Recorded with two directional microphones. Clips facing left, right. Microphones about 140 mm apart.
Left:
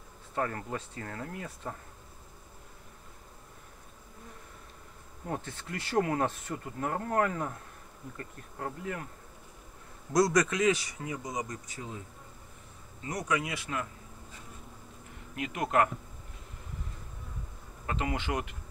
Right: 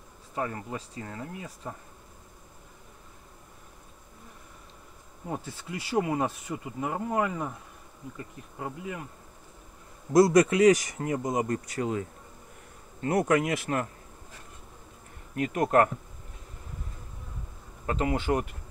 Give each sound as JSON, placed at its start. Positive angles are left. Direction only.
{"t": 0.4, "sound": "speech", "side_deg": -15}
{"t": 5.2, "sound": "speech", "side_deg": -10}
{"t": 10.1, "sound": "a man's voice", "side_deg": -25}
{"t": 10.5, "sound": "speech", "side_deg": -40}
{"t": 13.0, "sound": "speech", "side_deg": -55}
{"t": 15.3, "sound": "speech", "side_deg": -40}
{"t": 17.8, "sound": "speech", "side_deg": -35}